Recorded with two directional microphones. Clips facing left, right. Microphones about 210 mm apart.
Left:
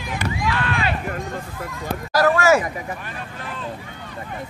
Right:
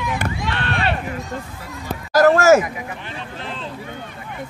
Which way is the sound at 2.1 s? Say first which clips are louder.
Right 4 dB; 45° right (ahead or behind).